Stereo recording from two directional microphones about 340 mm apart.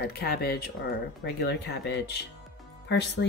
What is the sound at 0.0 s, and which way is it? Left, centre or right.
A woman's voice, left.